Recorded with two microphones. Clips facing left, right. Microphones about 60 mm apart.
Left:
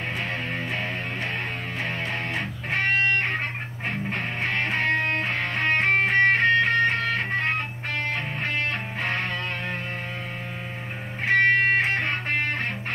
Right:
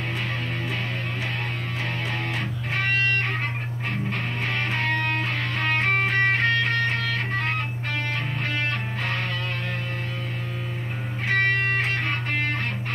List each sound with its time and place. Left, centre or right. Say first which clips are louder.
2.7 s music: left 2 dB; left
11.2 s music: left 3 dB; left